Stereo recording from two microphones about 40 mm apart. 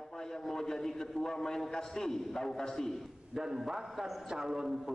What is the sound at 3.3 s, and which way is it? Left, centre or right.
A man's voice, centre.